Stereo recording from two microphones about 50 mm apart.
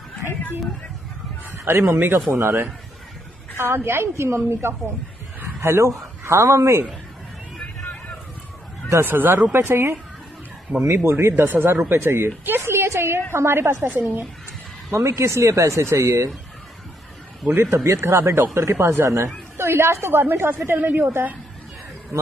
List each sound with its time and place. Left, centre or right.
1.7 s a woman's voice: right
9.0 s a woman's voice: right
9.5 s a woman's voice: right
10.7 s a man's voice: centre
11.1 s a woman's voice: right
11.3 s a woman's voice: right
13.8 s a woman's voice: right
14.9 s speech: right
17.5 s a woman's voice: right